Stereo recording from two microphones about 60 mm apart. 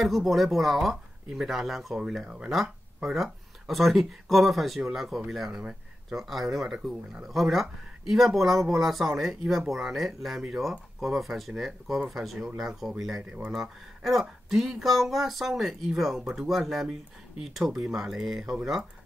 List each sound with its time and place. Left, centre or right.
0.0 s speech: centre
13.2 s speech: right
13.5 s speech: centre